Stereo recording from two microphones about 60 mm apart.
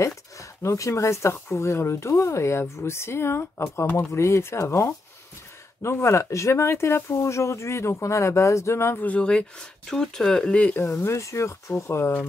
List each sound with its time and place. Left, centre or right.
0.0 s speech: left
4.1 s speech: left
9.0 s speech: centre
10.9 s speech: left